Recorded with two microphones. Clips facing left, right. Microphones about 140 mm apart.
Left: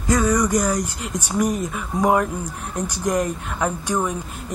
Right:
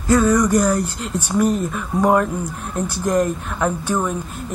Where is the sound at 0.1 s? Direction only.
15° left (ahead or behind).